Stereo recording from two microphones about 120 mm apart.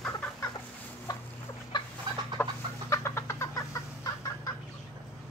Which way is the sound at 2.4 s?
15° left (ahead or behind).